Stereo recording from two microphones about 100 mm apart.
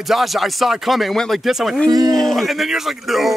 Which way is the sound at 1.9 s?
40° right (ahead or behind).